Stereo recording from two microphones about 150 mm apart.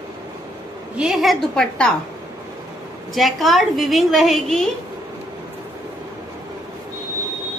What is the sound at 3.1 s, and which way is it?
A woman's voice, centre (ahead or behind).